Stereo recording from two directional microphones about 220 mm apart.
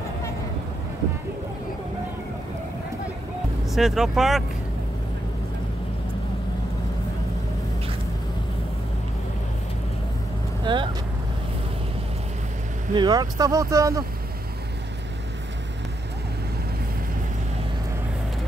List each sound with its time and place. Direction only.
3.7 s speech: centre (ahead or behind)
10.6 s vehicle: 20° right (ahead or behind)
12.9 s speech: 20° right (ahead or behind)